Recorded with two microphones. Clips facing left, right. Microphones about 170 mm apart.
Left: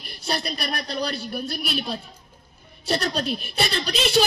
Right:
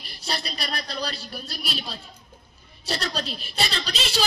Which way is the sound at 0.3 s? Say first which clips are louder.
Left 4 dB; 55° left (ahead or behind).